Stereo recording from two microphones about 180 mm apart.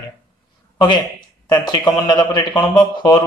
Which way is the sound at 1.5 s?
25° left (ahead or behind).